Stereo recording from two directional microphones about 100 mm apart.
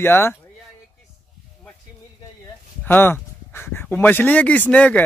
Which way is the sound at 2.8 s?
20° left (ahead or behind).